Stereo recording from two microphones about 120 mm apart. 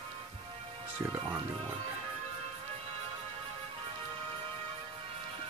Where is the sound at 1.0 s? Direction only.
20° right (ahead or behind).